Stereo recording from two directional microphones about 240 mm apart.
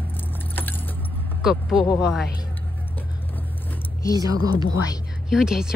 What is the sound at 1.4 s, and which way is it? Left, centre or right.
Speech, centre.